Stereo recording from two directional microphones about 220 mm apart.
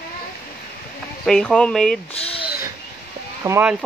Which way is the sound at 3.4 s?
10° right (ahead or behind).